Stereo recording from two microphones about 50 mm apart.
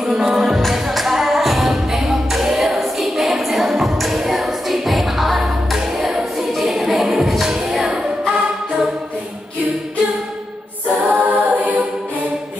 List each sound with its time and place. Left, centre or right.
0.0 s music: centre
7.4 s a capella: centre
11.1 s a capella: right